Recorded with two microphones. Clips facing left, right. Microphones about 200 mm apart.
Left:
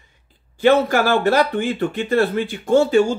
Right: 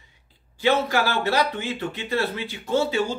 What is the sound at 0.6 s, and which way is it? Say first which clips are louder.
Speech: left 6 dB; 50° left (ahead or behind).